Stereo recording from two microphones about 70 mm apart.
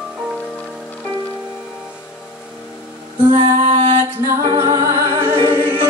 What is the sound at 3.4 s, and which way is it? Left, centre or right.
Music, right.